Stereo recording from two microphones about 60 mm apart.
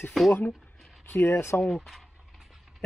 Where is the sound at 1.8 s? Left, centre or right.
Centre.